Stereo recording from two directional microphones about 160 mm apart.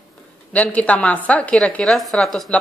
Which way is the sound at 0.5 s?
10° left (ahead or behind).